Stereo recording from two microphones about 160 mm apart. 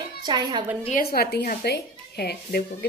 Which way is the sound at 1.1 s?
75° left (ahead or behind).